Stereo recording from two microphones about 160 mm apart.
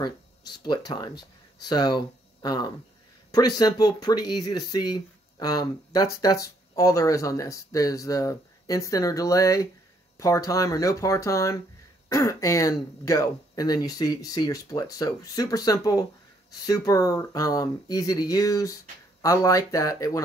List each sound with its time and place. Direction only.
0.0 s speech: 25° left (ahead or behind)